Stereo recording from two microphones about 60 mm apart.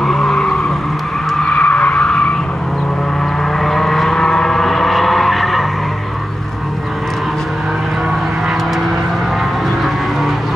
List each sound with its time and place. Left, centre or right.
0.0 s vehicle: centre
1.4 s skidding: left
2.0 s vehicle: centre
3.6 s vehicle: centre